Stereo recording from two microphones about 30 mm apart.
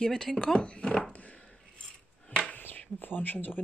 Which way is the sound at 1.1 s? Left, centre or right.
Left.